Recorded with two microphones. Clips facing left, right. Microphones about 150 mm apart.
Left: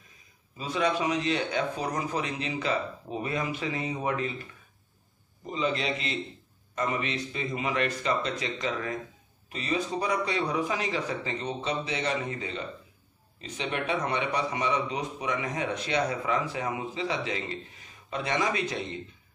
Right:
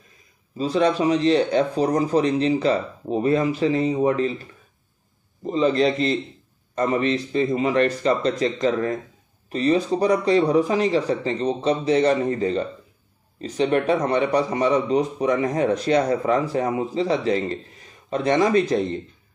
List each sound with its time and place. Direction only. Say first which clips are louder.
0.6 s speech: right 8 dB; 35° right (ahead or behind)
5.5 s speech: right 10 dB; 40° right (ahead or behind)